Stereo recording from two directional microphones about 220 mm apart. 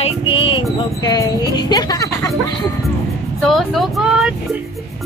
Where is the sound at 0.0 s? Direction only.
25° left (ahead or behind).